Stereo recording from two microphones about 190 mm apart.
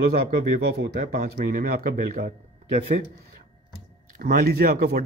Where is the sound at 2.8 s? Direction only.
35° right (ahead or behind).